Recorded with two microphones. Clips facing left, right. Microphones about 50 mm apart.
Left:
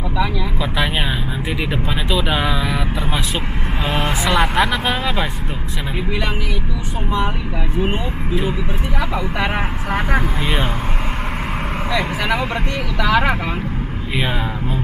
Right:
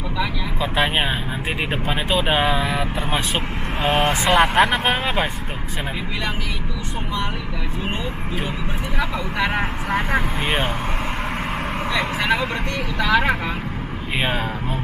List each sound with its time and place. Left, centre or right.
1.7 s speech: right
3.8 s speech: centre
5.0 s speech: right
9.4 s speech: centre
10.4 s speech: centre
11.9 s speech: centre